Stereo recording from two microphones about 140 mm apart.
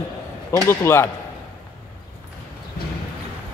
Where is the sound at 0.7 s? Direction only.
20° left (ahead or behind).